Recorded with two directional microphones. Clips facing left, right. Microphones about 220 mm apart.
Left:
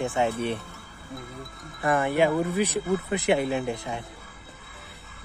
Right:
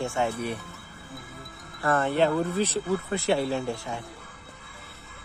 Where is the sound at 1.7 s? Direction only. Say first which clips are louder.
Left 1 dB; 15° left (ahead or behind).